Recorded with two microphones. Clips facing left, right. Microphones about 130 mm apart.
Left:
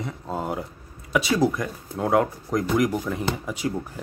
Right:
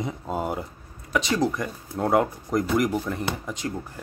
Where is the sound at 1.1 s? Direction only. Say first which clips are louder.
Left 2 dB; 5° left (ahead or behind).